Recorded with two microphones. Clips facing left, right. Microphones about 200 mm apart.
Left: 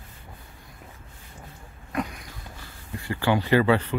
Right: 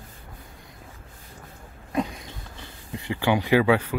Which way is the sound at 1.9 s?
25° right (ahead or behind).